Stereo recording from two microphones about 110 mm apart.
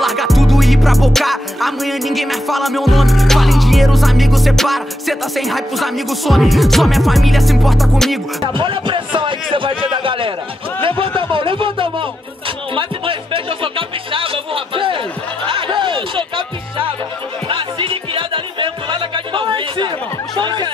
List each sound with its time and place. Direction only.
0.0 s music: centre (ahead or behind)
8.5 s a man's voice: 50° right (ahead or behind)
10.8 s a sound: 55° right (ahead or behind)
12.7 s music: 55° right (ahead or behind)
20.3 s speech: 45° right (ahead or behind)